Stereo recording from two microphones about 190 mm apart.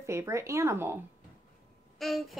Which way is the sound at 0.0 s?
15° right (ahead or behind).